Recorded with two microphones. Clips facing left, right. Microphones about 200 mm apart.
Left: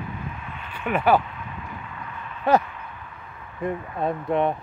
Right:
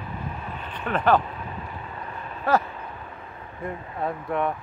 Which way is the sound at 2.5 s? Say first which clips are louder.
Left 3 dB; 20° left (ahead or behind).